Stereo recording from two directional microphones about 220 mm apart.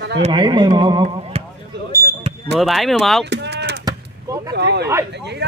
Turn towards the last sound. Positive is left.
turn(degrees=-50)  # may be behind; listen again after turning